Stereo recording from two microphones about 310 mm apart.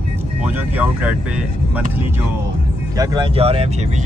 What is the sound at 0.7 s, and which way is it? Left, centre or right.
Speech, centre.